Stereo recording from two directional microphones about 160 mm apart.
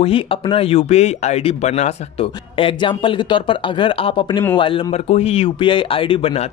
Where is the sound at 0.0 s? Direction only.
35° left (ahead or behind).